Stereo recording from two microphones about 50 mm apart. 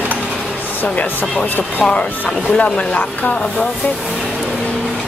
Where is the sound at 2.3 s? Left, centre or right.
Centre.